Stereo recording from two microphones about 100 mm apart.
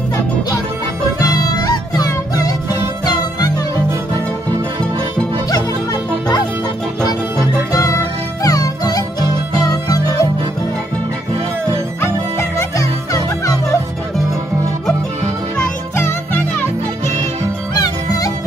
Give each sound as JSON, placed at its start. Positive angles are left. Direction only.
{"t": 1.4, "sound": "music", "side_deg": 40}
{"t": 7.9, "sound": "music", "side_deg": 35}
{"t": 12.0, "sound": "music", "side_deg": 25}
{"t": 17.8, "sound": "music", "side_deg": 40}